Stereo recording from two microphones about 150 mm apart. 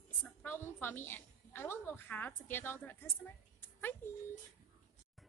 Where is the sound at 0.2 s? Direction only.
15° left (ahead or behind).